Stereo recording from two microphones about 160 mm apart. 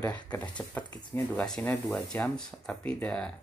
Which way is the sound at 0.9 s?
25° left (ahead or behind).